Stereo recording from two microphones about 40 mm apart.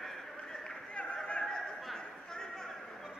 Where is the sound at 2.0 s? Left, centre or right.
Centre.